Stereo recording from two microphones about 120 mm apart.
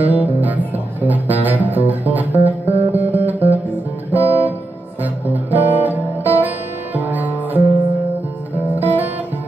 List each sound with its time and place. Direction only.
0.0 s music: 15° right (ahead or behind)
4.1 s guitar: 15° right (ahead or behind)
5.3 s music: 15° right (ahead or behind)
8.7 s music: 15° right (ahead or behind)